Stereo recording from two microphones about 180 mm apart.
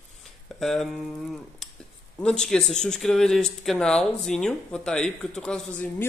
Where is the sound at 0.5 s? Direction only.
Centre (ahead or behind).